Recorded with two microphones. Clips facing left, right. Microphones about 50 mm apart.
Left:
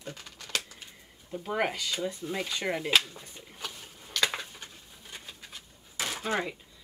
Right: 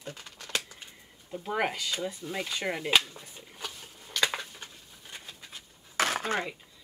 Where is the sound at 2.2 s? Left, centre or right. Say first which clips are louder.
Left 1 dB; centre.